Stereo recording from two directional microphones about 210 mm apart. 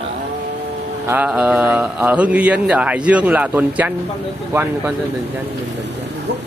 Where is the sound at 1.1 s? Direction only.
5° right (ahead or behind).